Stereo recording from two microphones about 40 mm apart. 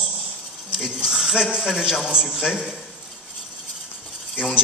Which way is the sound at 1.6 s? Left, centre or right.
Centre.